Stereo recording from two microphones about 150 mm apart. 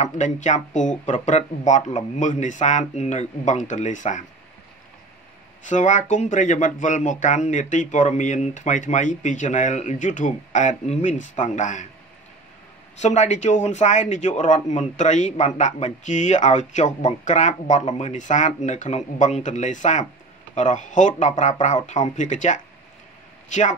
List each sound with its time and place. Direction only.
0.0 s speech: 50° left (ahead or behind)
5.7 s speech: 55° left (ahead or behind)
13.0 s speech: 50° left (ahead or behind)